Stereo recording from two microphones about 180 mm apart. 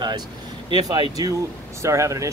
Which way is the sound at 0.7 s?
25° right (ahead or behind).